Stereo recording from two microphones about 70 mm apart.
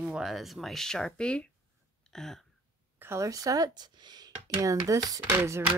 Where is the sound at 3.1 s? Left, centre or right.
Right.